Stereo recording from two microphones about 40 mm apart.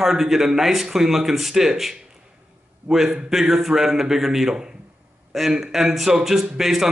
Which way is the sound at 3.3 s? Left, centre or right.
Centre.